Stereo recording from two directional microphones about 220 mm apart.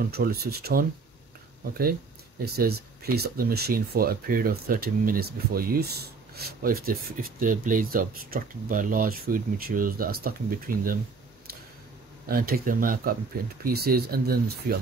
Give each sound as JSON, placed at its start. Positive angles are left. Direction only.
{"t": 0.1, "sound": "speech", "side_deg": -45}
{"t": 12.3, "sound": "speech", "side_deg": -40}